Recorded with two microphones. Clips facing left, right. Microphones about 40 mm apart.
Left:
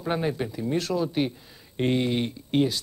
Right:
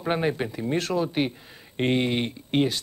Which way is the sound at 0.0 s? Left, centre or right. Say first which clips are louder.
Right 2 dB; right.